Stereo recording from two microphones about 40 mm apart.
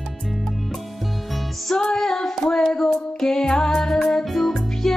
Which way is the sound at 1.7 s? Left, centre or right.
Centre.